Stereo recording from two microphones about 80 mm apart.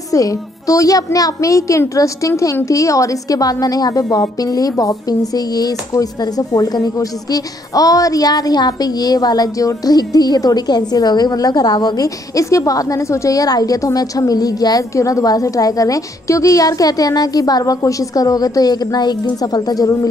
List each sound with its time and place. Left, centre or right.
0.1 s a woman's voice: left